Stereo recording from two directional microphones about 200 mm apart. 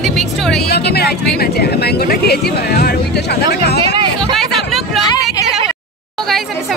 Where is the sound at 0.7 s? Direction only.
55° left (ahead or behind).